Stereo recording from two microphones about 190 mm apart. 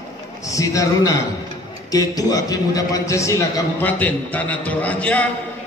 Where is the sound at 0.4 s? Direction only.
15° left (ahead or behind).